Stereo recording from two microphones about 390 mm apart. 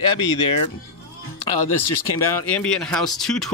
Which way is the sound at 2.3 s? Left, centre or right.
Centre.